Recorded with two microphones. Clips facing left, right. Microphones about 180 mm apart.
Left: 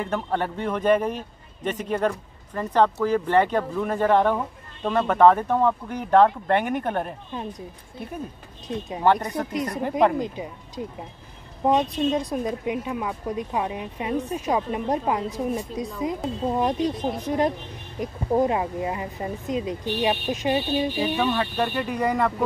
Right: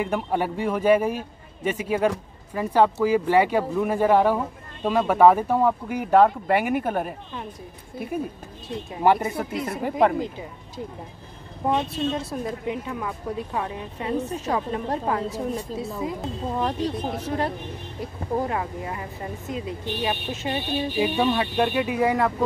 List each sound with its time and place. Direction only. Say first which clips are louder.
0.0 s a man's voice: right 1 dB; 10° right (ahead or behind)
9.0 s a man's voice: right 1 dB; 10° right (ahead or behind)
10.2 s a woman's voice: left 2 dB; 20° left (ahead or behind)
21.0 s a man's voice: right 1 dB; 15° right (ahead or behind)